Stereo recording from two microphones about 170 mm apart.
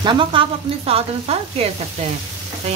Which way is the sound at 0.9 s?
35° right (ahead or behind).